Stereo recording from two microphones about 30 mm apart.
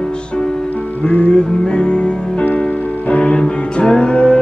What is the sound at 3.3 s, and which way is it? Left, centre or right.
Music, left.